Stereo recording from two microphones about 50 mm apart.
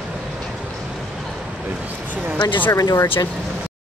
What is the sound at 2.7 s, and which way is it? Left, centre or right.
Speech, left.